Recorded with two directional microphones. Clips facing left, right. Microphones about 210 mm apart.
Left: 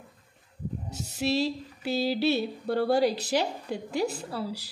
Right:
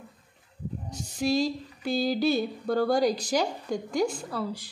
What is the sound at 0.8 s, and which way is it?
Music, 5° left (ahead or behind).